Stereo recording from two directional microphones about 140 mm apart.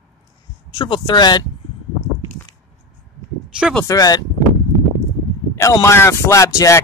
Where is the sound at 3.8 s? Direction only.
25° left (ahead or behind).